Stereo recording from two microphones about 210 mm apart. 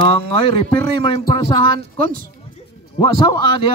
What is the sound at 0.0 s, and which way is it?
Speech, 25° left (ahead or behind).